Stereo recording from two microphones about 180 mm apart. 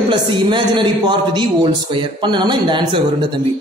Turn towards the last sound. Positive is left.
turn(degrees=-25)  # may be behind; listen again after turning